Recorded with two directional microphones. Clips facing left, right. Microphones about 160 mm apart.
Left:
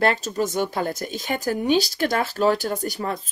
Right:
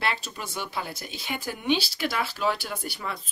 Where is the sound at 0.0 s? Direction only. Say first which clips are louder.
Left 10 dB; 45° left (ahead or behind).